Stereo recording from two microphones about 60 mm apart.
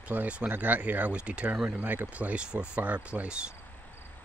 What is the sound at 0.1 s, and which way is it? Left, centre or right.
Speech, right.